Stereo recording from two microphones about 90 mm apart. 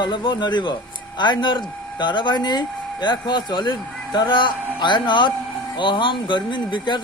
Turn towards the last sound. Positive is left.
turn(degrees=60)  # may be behind; listen again after turning